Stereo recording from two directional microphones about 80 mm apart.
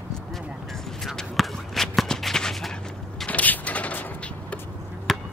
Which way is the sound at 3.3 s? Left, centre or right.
Centre.